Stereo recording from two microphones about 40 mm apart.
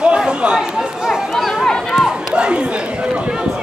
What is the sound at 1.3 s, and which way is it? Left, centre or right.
Speech, centre.